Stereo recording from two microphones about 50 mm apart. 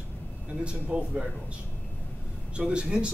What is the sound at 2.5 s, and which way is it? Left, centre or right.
Speech, right.